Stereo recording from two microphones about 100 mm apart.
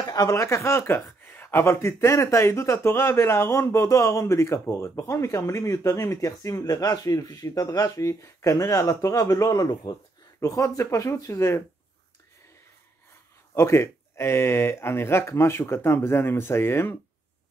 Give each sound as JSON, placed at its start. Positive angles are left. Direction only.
{"t": 0.0, "sound": "speech", "side_deg": 35}
{"t": 13.6, "sound": "speech", "side_deg": 30}